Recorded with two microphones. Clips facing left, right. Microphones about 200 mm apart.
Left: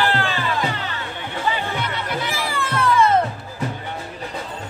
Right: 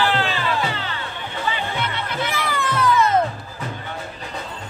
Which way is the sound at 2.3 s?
30° left (ahead or behind).